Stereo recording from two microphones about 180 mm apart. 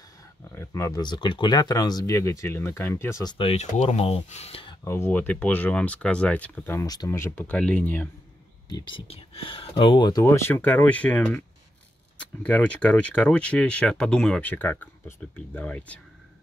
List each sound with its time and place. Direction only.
0.6 s speech: 15° left (ahead or behind)
3.3 s speech: 35° left (ahead or behind)
4.8 s speech: 15° left (ahead or behind)
8.6 s speech: 25° left (ahead or behind)
10.2 s speech: 15° left (ahead or behind)